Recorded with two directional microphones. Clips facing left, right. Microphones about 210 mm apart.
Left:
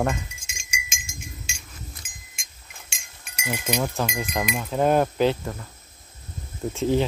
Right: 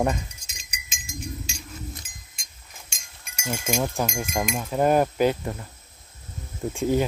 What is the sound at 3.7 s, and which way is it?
Speech, 45° right (ahead or behind).